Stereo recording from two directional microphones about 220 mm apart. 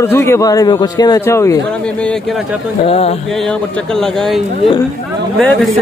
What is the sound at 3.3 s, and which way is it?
Speech, 5° left (ahead or behind).